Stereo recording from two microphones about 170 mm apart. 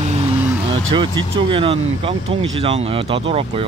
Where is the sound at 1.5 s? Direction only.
35° right (ahead or behind).